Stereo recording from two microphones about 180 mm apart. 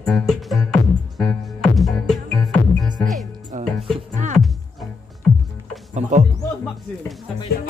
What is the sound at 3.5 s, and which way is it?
Music, 45° right (ahead or behind).